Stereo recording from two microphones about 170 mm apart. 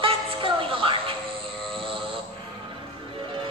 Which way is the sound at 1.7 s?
30° right (ahead or behind).